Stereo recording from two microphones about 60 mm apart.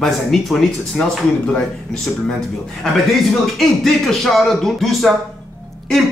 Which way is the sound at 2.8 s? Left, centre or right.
Centre.